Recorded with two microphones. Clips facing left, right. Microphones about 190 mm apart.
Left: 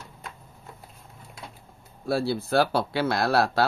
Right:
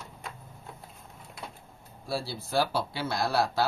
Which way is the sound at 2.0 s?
60° left (ahead or behind).